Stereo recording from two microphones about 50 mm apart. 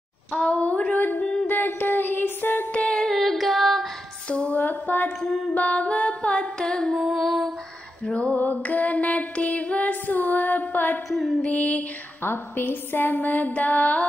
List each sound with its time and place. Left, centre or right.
0.3 s female singing: left
1.5 s a sound: left
2.7 s a sound: left
3.0 s female singing: centre
4.3 s a sound: left
5.2 s music: centre
5.5 s singing: left
7.0 s music: centre
8.4 s female singing: left
11.1 s music: centre
11.4 s music: left
12.2 s a sound: left